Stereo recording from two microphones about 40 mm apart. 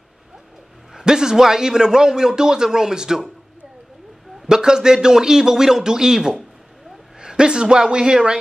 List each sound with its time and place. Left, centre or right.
0.9 s a man's voice: centre
4.5 s a man's voice: centre